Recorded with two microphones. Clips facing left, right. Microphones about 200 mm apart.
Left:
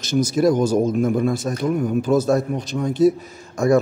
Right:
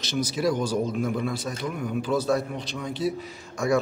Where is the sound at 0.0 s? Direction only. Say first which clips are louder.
Left 8 dB; 45° left (ahead or behind).